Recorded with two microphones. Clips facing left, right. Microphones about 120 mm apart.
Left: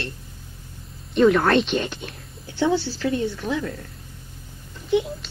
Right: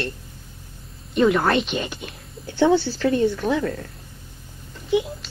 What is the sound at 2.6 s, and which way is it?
Speech, 55° right (ahead or behind).